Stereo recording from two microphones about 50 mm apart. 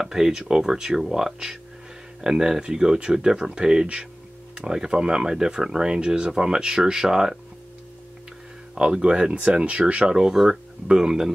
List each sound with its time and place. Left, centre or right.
0.0 s speech: centre
8.7 s speech: centre